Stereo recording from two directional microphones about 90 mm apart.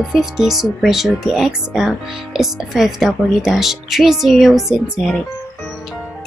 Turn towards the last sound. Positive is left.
turn(degrees=0)  # may be behind; listen again after turning